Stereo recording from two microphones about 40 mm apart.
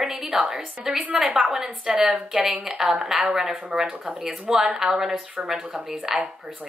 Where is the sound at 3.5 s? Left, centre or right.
Centre.